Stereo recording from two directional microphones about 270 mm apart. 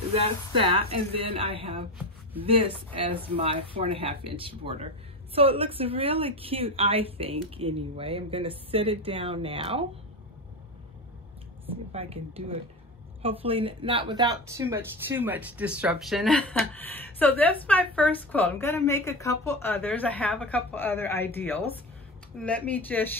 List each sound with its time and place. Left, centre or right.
0.1 s a woman's voice: right
11.9 s a woman's voice: right; by 23.0 s centre